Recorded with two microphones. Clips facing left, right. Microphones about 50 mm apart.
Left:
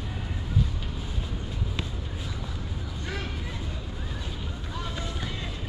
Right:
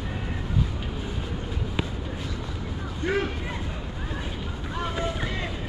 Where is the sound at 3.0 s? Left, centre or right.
Right.